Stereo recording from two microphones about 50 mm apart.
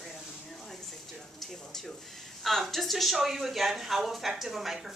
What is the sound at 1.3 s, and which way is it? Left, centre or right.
Speech, centre.